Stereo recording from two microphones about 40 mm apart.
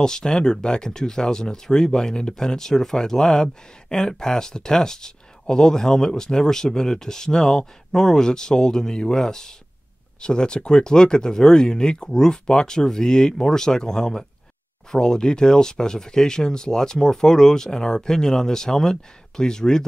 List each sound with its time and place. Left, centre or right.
0.0 s speech: centre